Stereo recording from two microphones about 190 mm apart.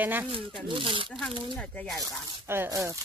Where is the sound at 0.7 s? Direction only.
25° right (ahead or behind).